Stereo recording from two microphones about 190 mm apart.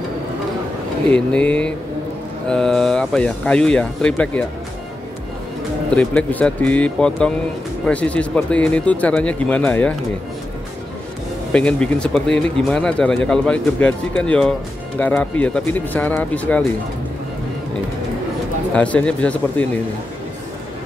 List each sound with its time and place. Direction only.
1.1 s speech: 5° left (ahead or behind)
5.9 s speech: 5° left (ahead or behind)
11.5 s speech: 5° left (ahead or behind)
18.8 s speech: 5° left (ahead or behind)